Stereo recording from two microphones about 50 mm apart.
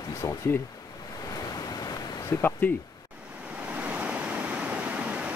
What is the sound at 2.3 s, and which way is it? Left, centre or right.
Speech, left.